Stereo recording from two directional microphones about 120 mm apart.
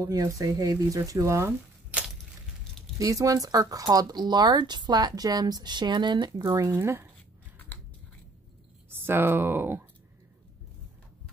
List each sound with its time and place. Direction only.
0.0 s speech: 30° right (ahead or behind)
3.0 s speech: 30° right (ahead or behind)
6.5 s speech: 25° right (ahead or behind)
8.9 s speech: 20° right (ahead or behind)